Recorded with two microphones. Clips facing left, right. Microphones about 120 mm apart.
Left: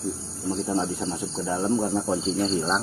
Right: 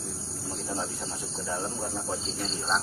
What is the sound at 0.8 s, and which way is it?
Speech, 25° left (ahead or behind).